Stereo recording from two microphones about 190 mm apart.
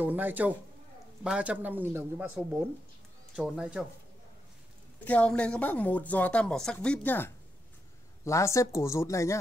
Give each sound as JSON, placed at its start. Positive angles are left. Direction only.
{"t": 0.0, "sound": "speech", "side_deg": -10}
{"t": 5.0, "sound": "speech", "side_deg": 5}